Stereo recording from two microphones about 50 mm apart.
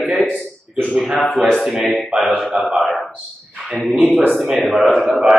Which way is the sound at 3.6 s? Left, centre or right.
Right.